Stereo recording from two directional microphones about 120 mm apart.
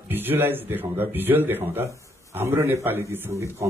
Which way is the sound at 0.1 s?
15° right (ahead or behind).